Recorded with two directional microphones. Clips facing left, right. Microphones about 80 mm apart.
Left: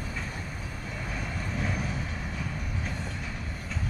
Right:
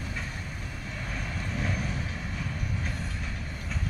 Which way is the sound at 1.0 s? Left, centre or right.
Centre.